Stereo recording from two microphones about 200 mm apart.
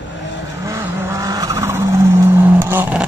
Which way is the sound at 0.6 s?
15° right (ahead or behind).